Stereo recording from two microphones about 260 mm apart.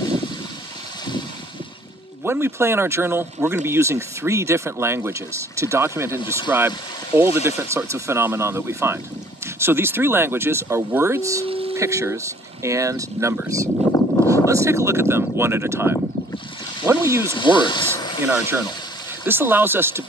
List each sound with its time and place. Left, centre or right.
2.2 s speech: centre
13.9 s a sound: centre
14.3 s speech: centre
16.8 s a sound: centre
17.3 s speech: centre
18.2 s speech: centre